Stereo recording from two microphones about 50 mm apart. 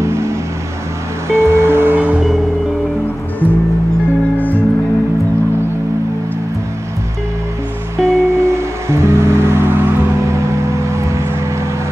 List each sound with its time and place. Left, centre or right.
0.0 s vehicle: right
1.3 s music: right
8.0 s music: right
10.2 s a sound: right